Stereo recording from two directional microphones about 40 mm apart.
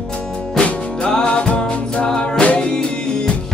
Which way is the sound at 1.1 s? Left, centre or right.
Left.